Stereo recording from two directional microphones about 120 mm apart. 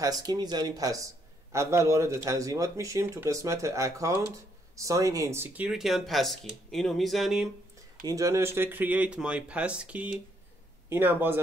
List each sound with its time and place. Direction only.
0.0 s speech: 35° right (ahead or behind); by 5.7 s 15° right (ahead or behind)
5.7 s speech: centre (ahead or behind)
8.0 s speech: 30° right (ahead or behind)